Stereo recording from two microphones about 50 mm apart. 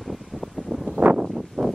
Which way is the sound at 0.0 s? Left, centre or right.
Centre.